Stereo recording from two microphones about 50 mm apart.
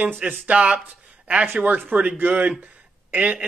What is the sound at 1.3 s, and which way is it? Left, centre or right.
A man's voice, right.